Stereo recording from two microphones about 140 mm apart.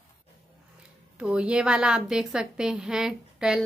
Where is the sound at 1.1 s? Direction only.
5° right (ahead or behind).